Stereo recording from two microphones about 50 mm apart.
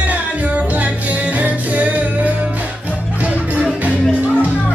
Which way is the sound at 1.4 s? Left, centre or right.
Right.